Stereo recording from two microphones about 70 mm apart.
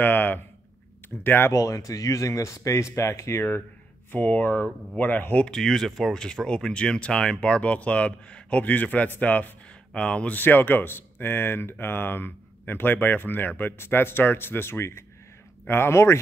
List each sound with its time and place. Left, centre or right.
0.0 s a man's voice: left
1.5 s speech: left
4.1 s speech: left
5.5 s speech: centre
10.3 s speech: left